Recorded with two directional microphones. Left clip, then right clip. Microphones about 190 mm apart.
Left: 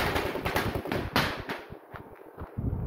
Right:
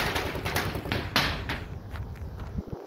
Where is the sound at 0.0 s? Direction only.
25° left (ahead or behind).